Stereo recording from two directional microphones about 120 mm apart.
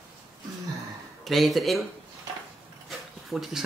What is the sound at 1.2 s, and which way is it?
Speech, centre (ahead or behind).